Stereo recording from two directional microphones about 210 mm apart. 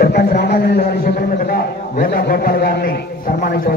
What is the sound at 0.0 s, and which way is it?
A man's voice, 45° left (ahead or behind).